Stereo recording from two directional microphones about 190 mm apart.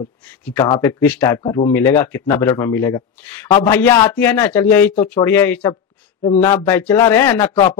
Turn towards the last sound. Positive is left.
turn(degrees=15)  # may be behind; listen again after turning